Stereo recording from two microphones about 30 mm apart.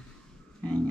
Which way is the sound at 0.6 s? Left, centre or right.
Left.